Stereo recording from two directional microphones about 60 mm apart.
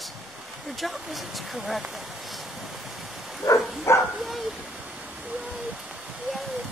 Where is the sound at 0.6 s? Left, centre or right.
Centre.